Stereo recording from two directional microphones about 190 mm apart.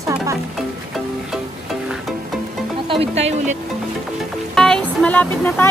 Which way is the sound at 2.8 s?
30° right (ahead or behind).